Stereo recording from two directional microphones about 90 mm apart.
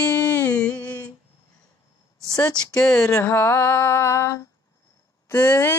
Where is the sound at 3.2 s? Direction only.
20° left (ahead or behind); by 5.7 s 35° left (ahead or behind).